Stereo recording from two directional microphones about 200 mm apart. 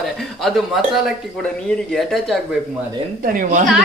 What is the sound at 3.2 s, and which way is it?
Speech, 45° right (ahead or behind).